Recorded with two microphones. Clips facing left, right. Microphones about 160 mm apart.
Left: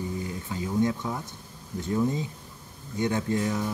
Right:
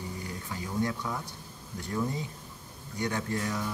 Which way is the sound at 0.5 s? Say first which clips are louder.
Left 6 dB; 20° left (ahead or behind).